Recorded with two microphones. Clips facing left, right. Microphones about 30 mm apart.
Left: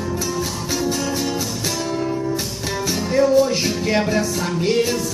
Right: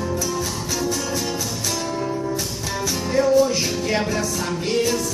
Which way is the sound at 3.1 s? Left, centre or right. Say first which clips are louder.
Left 1 dB; centre.